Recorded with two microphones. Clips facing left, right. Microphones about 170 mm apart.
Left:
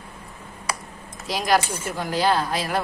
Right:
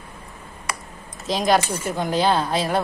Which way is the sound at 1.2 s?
25° right (ahead or behind).